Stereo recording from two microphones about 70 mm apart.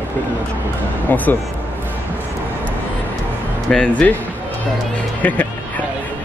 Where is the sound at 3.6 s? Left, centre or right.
Centre.